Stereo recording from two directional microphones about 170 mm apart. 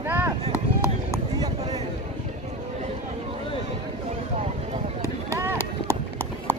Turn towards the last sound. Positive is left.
turn(degrees=10)  # may be behind; listen again after turning